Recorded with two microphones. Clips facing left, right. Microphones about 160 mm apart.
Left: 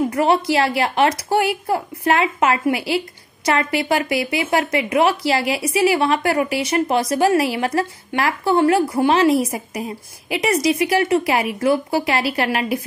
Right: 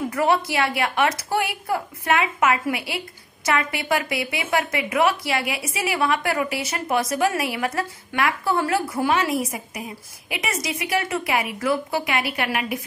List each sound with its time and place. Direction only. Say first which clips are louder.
0.1 s a woman's voice: left 4 dB; 30° left (ahead or behind)